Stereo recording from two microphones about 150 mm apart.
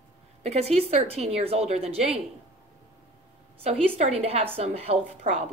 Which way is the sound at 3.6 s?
45° right (ahead or behind).